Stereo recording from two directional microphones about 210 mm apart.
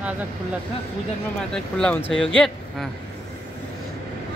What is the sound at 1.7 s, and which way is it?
A man's voice, 5° left (ahead or behind).